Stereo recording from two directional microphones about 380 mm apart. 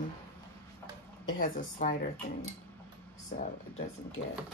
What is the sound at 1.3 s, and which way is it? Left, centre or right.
Speech, left.